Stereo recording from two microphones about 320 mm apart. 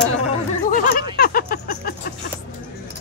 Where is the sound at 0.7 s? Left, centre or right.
Left.